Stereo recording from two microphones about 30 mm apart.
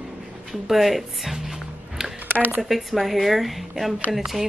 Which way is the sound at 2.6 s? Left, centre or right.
Centre.